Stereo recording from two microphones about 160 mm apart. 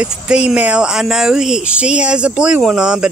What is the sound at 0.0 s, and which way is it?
Speech, 5° right (ahead or behind).